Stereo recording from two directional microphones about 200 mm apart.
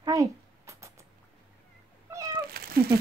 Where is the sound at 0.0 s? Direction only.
15° right (ahead or behind).